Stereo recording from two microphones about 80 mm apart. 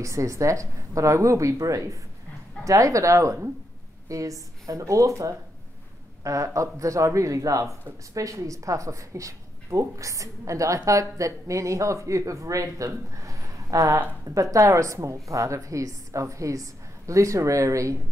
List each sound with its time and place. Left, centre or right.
0.0 s a woman's voice: right